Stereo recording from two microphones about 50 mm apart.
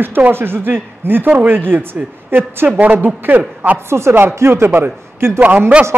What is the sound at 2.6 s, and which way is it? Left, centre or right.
Speech, right.